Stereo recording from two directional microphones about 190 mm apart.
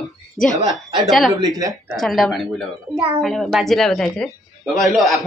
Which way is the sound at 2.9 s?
25° right (ahead or behind).